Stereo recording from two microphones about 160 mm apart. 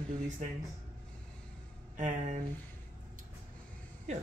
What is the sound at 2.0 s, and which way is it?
Speech, 50° right (ahead or behind).